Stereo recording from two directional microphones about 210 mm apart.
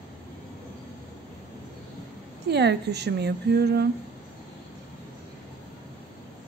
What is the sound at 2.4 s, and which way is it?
A woman's voice, 50° right (ahead or behind).